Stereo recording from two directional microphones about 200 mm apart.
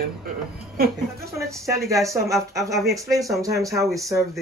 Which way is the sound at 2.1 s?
15° right (ahead or behind).